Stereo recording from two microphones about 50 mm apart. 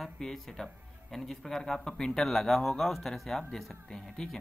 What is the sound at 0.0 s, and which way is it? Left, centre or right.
A man's voice, centre.